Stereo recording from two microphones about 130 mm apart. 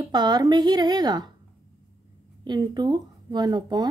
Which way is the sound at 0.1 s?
35° right (ahead or behind).